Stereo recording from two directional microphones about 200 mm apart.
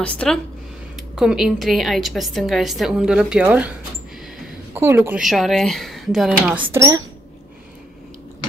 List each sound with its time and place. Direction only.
0.0 s a woman's voice: 5° left (ahead or behind)
4.7 s a woman's voice: 10° right (ahead or behind)
5.2 s a woman's voice: centre (ahead or behind)
6.7 s a woman's voice: 15° right (ahead or behind)